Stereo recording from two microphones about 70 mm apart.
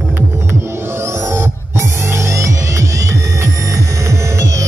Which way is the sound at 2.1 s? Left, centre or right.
Right.